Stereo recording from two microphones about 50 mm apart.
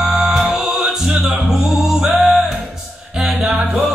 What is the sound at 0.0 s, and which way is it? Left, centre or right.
Music, centre.